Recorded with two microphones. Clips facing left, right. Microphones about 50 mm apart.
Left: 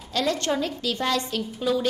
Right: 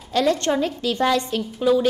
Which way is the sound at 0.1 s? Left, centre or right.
Right.